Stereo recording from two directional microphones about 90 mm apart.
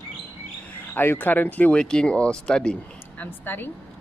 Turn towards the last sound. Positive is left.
turn(degrees=20)  # may be behind; listen again after turning